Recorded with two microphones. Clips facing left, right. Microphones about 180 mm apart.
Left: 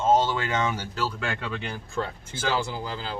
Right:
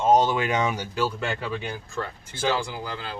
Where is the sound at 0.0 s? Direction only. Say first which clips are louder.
Right 2 dB; 15° right (ahead or behind).